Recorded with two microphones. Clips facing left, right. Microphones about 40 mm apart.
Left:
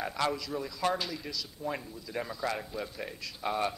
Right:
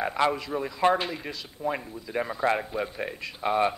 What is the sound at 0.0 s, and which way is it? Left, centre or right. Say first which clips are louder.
Speech: right 6 dB; right.